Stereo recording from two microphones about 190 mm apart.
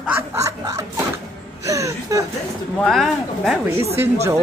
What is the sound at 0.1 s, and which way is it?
Snicker, 15° right (ahead or behind).